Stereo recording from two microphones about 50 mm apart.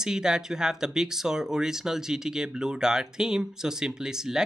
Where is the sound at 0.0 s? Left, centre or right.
Centre.